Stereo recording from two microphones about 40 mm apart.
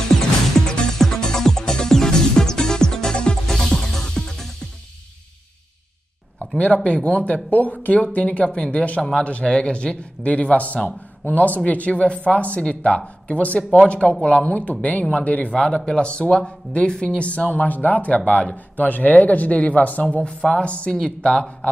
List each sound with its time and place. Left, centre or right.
0.1 s music: centre
6.6 s speech: left
18.9 s speech: left
20.2 s speech: left